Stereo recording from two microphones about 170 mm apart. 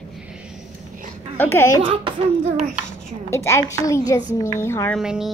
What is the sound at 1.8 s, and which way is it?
Speech, 35° right (ahead or behind).